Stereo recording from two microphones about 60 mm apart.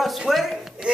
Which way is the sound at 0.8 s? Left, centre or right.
Centre.